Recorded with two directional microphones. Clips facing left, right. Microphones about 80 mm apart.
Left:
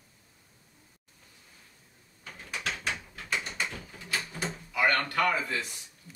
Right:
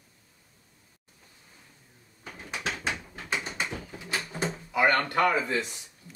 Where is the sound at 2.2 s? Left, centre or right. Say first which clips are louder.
Right 3 dB; centre.